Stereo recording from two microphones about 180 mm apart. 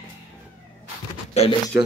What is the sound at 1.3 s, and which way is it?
Pigeon, 35° left (ahead or behind).